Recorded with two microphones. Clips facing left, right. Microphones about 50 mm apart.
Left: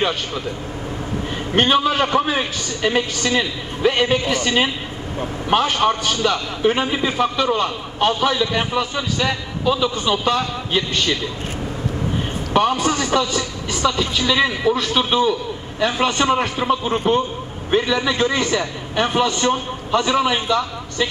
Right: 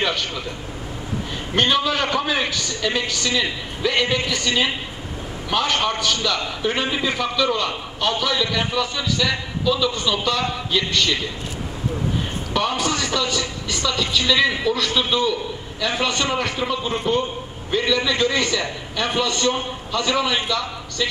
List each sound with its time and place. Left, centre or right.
1.5 s a man's voice: left
5.8 s a man's voice: left
12.5 s a woman's voice: left